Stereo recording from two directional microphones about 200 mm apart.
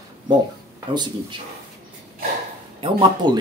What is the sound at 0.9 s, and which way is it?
Speech, 20° right (ahead or behind).